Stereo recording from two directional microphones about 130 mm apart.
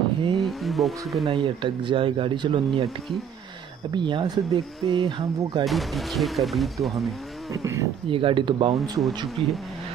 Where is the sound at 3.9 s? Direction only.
35° right (ahead or behind).